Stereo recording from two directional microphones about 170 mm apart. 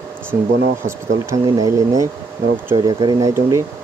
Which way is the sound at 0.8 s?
20° right (ahead or behind).